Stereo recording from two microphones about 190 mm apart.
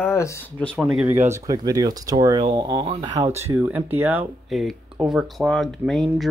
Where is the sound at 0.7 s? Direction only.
5° right (ahead or behind).